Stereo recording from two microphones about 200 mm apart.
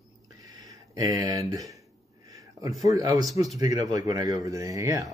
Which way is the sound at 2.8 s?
15° right (ahead or behind).